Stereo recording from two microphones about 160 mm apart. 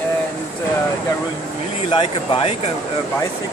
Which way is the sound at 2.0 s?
40° left (ahead or behind).